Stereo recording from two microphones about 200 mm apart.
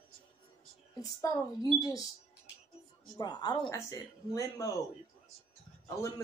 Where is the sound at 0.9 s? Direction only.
15° left (ahead or behind).